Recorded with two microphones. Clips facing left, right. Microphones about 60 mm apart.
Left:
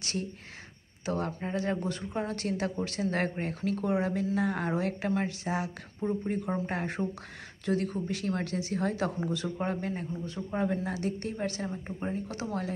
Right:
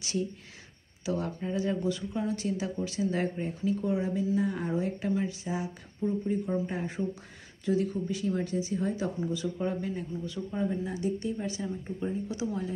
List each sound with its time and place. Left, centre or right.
0.0 s speech: left